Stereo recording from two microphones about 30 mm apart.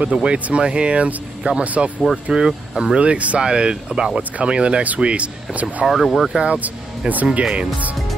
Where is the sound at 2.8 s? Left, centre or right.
Right.